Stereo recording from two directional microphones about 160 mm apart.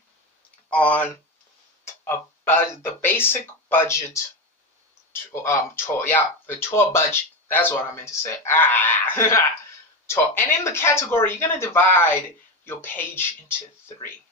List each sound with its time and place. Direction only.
0.7 s speech: 10° left (ahead or behind)